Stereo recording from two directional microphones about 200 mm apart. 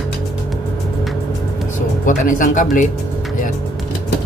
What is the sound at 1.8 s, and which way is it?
Speech, 40° left (ahead or behind).